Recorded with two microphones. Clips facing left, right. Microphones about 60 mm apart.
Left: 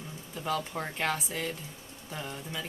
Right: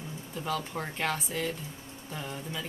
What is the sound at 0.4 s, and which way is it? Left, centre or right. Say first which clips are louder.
Speech: left 1 dB; centre.